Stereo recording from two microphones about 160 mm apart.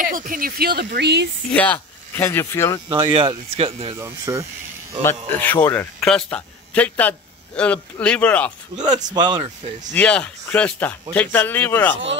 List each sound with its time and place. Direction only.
0.0 s speech: 60° right (ahead or behind); by 1.3 s 90° right
1.5 s speech: 10° left (ahead or behind)
2.9 s speech: 35° right (ahead or behind)
4.0 s speech: 20° right (ahead or behind)
5.0 s speech: 10° left (ahead or behind)
8.7 s speech: 50° right (ahead or behind)
9.1 s speech: 25° right (ahead or behind)
9.9 s speech: 5° left (ahead or behind)